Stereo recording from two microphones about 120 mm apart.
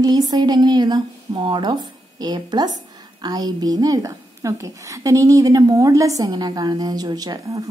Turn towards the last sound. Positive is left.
turn(degrees=-30)  # may be behind; listen again after turning